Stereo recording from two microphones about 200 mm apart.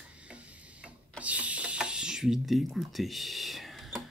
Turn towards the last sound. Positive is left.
turn(degrees=0)  # may be behind; listen again after turning